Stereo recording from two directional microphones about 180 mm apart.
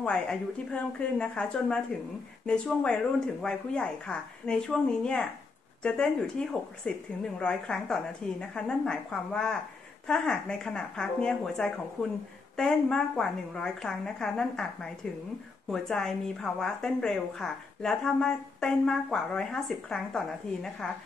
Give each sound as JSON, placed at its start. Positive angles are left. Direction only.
{"t": 0.0, "sound": "a woman's voice", "side_deg": 5}